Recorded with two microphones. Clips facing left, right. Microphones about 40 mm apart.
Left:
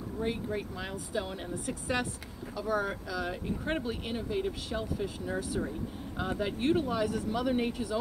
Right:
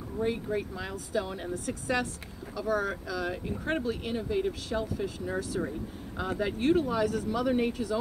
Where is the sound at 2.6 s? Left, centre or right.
Centre.